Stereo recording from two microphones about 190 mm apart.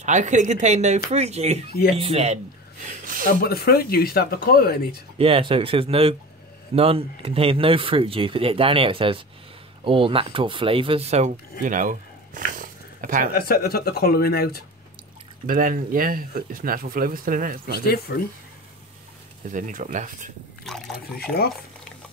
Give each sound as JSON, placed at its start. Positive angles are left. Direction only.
{"t": 0.0, "sound": "speech", "side_deg": -40}
{"t": 3.4, "sound": "speech", "side_deg": 55}
{"t": 5.1, "sound": "speech", "side_deg": -30}
{"t": 13.3, "sound": "speech", "side_deg": 55}
{"t": 15.4, "sound": "speech", "side_deg": -45}
{"t": 17.6, "sound": "speech", "side_deg": 55}
{"t": 19.5, "sound": "speech", "side_deg": -40}
{"t": 20.6, "sound": "speech", "side_deg": 0}